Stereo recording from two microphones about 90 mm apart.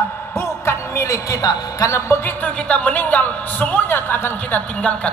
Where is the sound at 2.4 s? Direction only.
20° left (ahead or behind).